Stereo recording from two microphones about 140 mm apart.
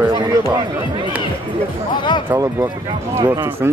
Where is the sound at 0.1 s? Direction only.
25° right (ahead or behind).